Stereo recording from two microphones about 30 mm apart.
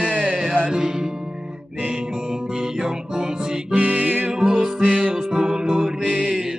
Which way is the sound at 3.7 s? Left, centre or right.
Right.